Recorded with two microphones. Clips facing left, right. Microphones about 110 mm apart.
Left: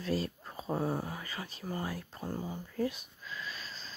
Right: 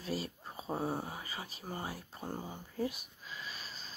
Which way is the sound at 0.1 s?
10° right (ahead or behind).